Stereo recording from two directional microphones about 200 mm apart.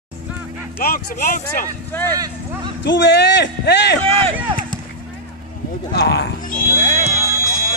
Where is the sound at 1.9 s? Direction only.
10° left (ahead or behind).